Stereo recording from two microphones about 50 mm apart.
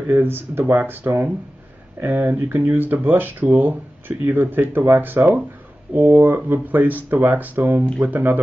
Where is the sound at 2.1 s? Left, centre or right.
Right.